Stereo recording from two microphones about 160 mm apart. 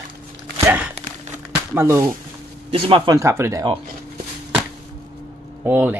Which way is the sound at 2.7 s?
35° right (ahead or behind).